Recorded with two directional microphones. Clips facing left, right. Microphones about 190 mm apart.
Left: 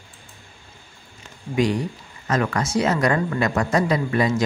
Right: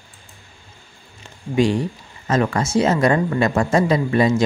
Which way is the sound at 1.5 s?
25° right (ahead or behind).